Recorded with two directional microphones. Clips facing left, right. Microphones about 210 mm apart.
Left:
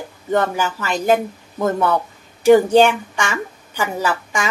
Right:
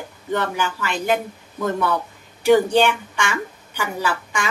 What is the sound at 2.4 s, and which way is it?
A woman's voice, 45° left (ahead or behind).